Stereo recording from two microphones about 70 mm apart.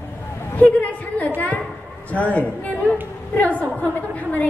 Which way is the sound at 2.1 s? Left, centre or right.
Left.